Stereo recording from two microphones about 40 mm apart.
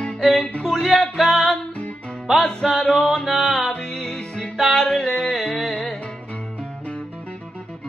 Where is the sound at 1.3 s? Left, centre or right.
Centre.